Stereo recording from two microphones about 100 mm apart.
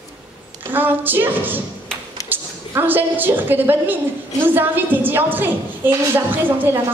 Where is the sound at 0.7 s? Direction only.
20° right (ahead or behind).